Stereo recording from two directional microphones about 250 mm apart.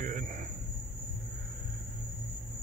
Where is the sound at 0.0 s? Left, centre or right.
Right.